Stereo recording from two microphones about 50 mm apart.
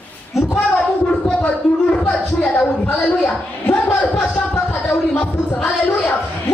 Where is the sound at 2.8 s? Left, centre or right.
Left.